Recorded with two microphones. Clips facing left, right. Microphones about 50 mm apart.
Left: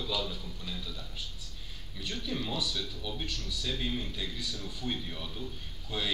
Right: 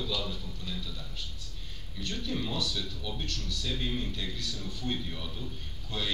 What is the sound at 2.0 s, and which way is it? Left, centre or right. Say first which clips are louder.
A man's voice: right 1 dB; centre.